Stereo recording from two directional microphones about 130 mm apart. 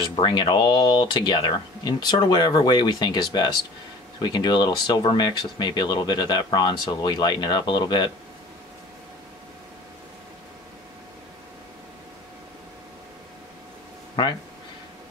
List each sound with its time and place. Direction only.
0.0 s speech: 35° left (ahead or behind)